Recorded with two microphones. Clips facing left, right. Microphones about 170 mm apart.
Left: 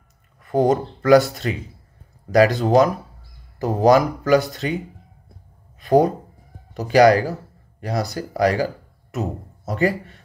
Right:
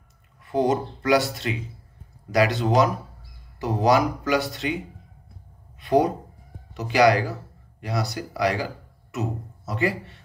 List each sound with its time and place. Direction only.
0.4 s speech: 45° left (ahead or behind)
5.8 s a sound: 45° left (ahead or behind)
6.8 s speech: 45° left (ahead or behind)
9.7 s speech: 45° left (ahead or behind)